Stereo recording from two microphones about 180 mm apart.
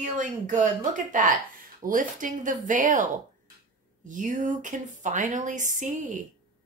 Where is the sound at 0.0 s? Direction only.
45° right (ahead or behind).